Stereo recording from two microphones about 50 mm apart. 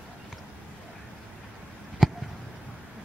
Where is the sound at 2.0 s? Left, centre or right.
Centre.